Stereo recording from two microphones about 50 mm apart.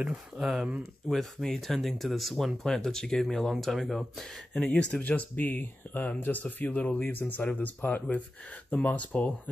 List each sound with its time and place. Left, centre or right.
0.1 s speech: centre
1.4 s speech: centre
4.6 s speech: left
5.0 s speech: left